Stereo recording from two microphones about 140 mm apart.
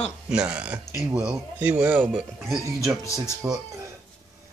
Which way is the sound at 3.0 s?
20° left (ahead or behind).